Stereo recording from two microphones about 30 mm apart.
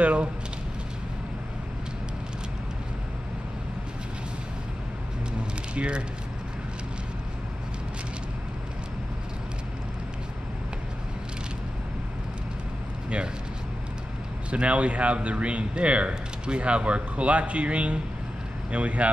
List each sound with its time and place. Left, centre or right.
0.0 s speech: right
5.8 s speech: right
14.5 s speech: right